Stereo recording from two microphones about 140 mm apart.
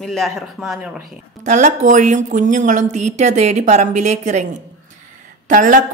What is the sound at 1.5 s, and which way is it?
A woman's voice, 60° right (ahead or behind).